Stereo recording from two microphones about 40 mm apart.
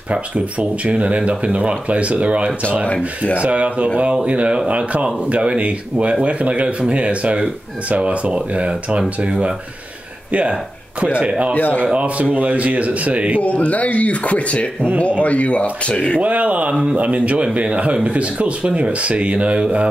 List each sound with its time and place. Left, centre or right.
0.1 s speech: right
11.1 s speech: right
11.5 s speech: left
11.8 s speech: right
13.4 s speech: left
16.2 s speech: right